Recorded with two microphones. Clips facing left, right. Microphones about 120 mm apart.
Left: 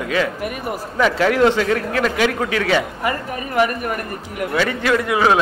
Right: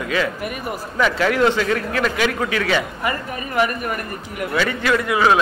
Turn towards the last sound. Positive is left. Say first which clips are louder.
# left 1 dB
turn(degrees=45)  # may be behind; listen again after turning